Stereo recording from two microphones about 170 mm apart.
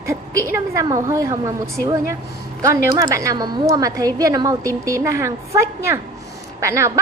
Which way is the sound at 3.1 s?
20° right (ahead or behind).